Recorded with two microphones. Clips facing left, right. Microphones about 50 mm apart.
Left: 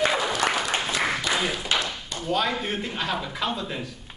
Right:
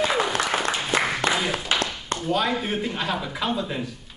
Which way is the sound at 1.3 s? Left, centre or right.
Right.